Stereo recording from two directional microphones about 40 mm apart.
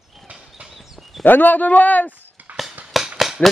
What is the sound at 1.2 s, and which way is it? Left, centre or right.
Speech, left.